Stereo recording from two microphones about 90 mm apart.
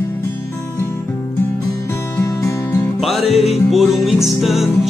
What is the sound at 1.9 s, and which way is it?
Music, 30° left (ahead or behind).